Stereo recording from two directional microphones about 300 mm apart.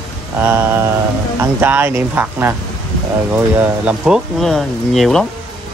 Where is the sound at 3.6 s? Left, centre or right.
Centre.